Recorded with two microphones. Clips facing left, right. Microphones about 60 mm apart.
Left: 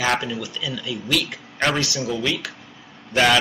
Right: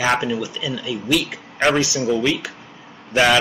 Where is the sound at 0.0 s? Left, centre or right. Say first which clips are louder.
Right 3 dB; centre.